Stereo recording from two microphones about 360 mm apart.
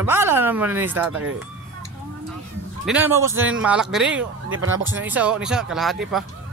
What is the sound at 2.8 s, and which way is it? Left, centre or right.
A man's voice, centre.